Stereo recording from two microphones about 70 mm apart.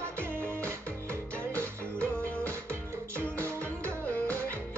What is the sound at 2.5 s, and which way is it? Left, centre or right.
Music, right.